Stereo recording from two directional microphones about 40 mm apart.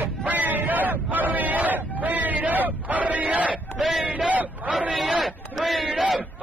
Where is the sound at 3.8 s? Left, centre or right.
Centre.